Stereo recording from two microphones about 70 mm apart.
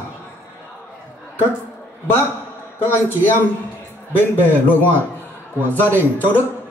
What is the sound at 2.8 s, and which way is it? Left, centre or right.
Speech, left.